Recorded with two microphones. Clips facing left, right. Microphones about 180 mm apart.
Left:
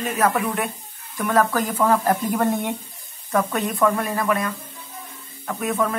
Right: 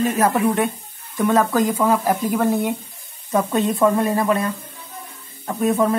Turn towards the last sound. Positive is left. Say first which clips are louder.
# right 5 dB
turn(degrees=-30)  # may be behind; listen again after turning